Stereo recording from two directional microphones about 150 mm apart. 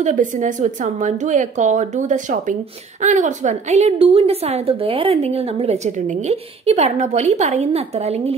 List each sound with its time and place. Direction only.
0.0 s a woman's voice: 55° right (ahead or behind)